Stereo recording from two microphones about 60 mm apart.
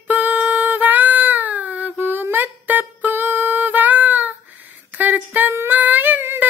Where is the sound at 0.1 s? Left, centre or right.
Right.